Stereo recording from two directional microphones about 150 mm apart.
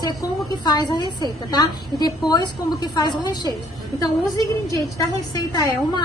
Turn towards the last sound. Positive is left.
turn(degrees=25)  # may be behind; listen again after turning